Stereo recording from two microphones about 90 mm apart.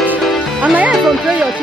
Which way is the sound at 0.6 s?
15° right (ahead or behind).